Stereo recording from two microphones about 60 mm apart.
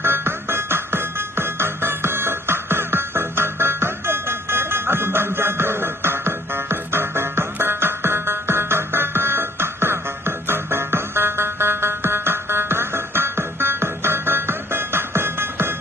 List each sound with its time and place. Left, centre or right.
0.0 s music: right